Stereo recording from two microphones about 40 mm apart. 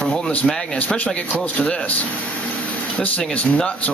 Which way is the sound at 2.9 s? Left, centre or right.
Left.